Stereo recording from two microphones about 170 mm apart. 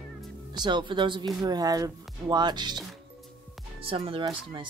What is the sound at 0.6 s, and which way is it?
Speech, 25° right (ahead or behind).